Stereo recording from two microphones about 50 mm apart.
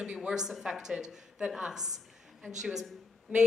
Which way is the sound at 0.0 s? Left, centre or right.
Centre.